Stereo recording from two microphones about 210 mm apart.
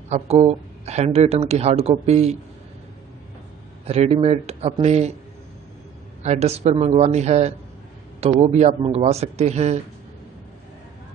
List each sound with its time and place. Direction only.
0.1 s speech: 30° right (ahead or behind)
3.8 s speech: 30° right (ahead or behind)
6.2 s speech: 30° right (ahead or behind)